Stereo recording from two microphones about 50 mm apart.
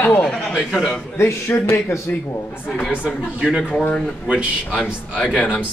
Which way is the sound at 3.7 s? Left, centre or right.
Left.